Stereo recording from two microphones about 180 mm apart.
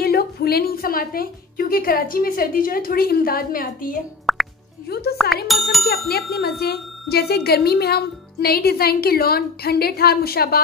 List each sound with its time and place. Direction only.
0.0 s speech: 60° left (ahead or behind)
4.3 s plop: centre (ahead or behind)
4.8 s speech: 60° left (ahead or behind)
5.1 s speech: centre (ahead or behind)
6.0 s speech: 60° left (ahead or behind)